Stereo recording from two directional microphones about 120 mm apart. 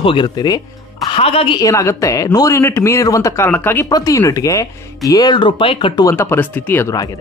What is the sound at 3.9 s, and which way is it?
Speech, 30° left (ahead or behind).